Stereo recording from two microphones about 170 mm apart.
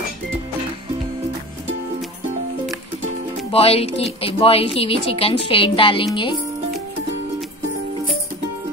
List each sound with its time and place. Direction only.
3.5 s a woman's voice: 35° left (ahead or behind)